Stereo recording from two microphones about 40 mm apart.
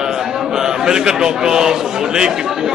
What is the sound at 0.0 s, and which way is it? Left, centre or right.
A man's voice, centre.